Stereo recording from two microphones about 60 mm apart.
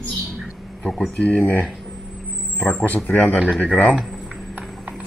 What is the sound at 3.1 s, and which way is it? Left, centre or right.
Speech, left.